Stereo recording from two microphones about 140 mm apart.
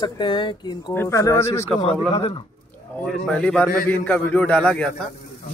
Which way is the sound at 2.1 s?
40° left (ahead or behind).